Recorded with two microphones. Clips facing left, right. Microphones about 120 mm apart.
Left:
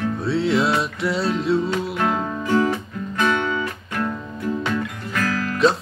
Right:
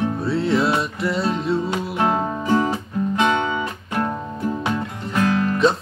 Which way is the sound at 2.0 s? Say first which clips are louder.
Right 2 dB; 30° right (ahead or behind).